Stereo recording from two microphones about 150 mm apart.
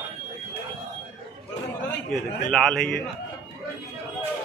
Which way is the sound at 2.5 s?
5° left (ahead or behind).